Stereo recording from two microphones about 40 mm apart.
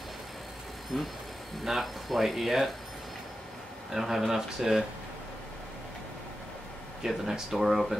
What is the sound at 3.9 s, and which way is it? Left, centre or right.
Speech, centre.